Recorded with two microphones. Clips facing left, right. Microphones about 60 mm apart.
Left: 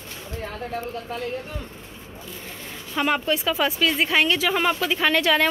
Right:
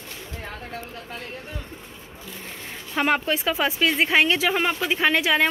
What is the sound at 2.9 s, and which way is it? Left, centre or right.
Speech, right.